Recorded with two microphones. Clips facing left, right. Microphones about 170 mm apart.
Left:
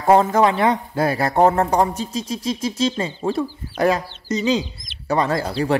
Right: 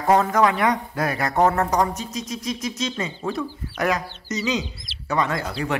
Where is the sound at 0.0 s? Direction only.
30° left (ahead or behind).